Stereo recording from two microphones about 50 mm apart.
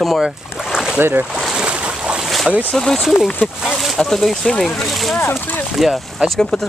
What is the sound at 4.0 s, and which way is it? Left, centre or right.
Speech, centre.